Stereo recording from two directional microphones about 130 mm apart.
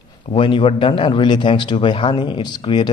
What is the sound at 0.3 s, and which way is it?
Speech, 40° left (ahead or behind).